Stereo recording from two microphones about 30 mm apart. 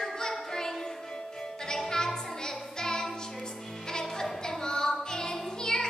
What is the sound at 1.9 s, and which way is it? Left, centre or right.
Music, left.